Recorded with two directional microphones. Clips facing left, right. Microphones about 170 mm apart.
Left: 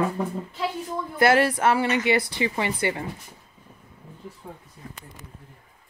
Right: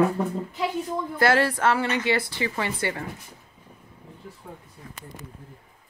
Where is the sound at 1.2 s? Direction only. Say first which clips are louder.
Left 2 dB; 15° left (ahead or behind).